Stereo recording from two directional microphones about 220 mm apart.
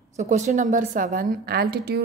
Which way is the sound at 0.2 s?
30° right (ahead or behind).